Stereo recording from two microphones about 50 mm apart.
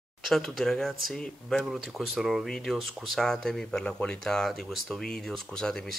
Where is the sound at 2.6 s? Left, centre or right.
Centre.